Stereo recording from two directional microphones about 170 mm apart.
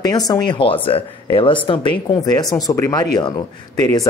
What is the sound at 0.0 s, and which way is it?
Speech, 20° left (ahead or behind).